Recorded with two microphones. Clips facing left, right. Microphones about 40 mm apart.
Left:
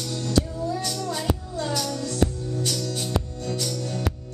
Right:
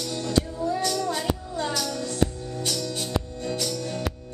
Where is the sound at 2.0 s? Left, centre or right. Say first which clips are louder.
Left 1 dB; centre.